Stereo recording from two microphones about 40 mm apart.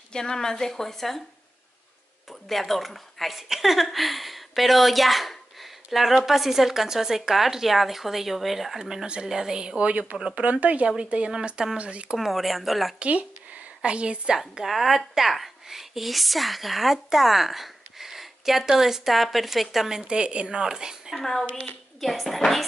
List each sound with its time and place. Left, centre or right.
0.1 s a woman's voice: centre
2.4 s speech: centre
9.0 s speech: right
9.3 s a woman's voice: centre
9.8 s speech: right
12.2 s speech: centre
13.0 s a sound: right
13.8 s speech: right
14.6 s a woman's voice: centre
20.1 s speech: right
21.1 s a woman's voice: centre